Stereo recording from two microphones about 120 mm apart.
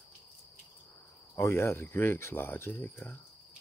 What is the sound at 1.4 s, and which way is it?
Speech, 25° left (ahead or behind).